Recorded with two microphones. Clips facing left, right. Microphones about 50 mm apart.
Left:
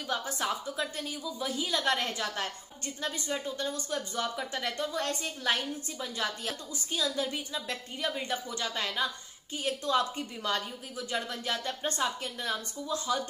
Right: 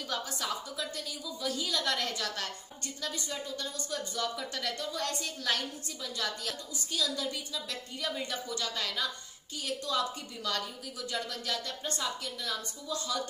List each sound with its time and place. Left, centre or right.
0.4 s a woman's voice: left